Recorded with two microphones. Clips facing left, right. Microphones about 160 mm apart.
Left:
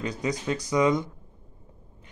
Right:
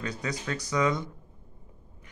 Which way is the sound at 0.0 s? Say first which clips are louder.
Left 5 dB; 20° left (ahead or behind).